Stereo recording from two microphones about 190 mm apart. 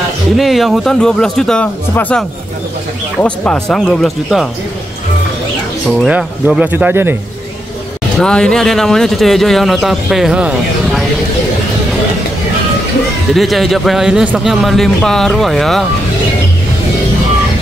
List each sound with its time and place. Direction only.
0.4 s a man's voice: centre (ahead or behind)
5.9 s speech: centre (ahead or behind)
8.2 s a man's voice: 5° left (ahead or behind)
13.3 s a man's voice: centre (ahead or behind)